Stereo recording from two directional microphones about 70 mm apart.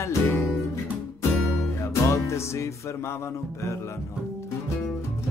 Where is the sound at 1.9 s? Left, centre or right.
Left.